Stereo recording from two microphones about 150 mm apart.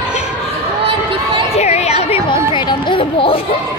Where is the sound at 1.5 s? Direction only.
45° left (ahead or behind).